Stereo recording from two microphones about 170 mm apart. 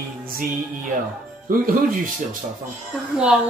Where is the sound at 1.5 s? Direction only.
55° right (ahead or behind).